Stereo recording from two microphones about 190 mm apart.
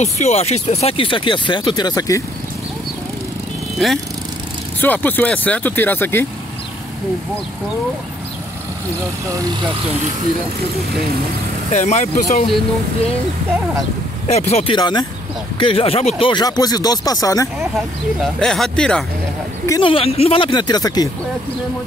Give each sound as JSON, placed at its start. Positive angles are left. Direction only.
{"t": 0.0, "sound": "speech", "side_deg": 35}
{"t": 3.7, "sound": "speech", "side_deg": 0}
{"t": 11.7, "sound": "speech", "side_deg": 40}
{"t": 14.2, "sound": "speech", "side_deg": 35}
{"t": 18.2, "sound": "speech", "side_deg": 0}
{"t": 19.6, "sound": "a woman's voice", "side_deg": 15}
{"t": 19.9, "sound": "speech", "side_deg": 30}